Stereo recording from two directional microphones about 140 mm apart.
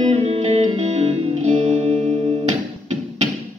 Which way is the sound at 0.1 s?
50° right (ahead or behind).